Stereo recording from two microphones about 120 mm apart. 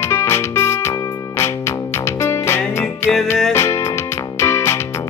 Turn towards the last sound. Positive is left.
turn(degrees=20)  # may be behind; listen again after turning